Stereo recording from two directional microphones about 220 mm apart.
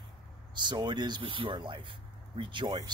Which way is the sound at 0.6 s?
20° right (ahead or behind).